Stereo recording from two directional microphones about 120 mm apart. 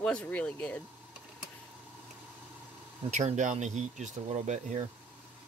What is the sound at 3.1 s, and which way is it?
Speech, 80° right.